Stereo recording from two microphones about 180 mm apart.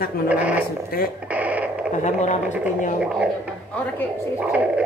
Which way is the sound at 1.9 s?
40° left (ahead or behind).